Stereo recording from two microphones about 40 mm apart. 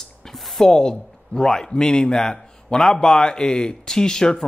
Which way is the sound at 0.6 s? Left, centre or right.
Centre.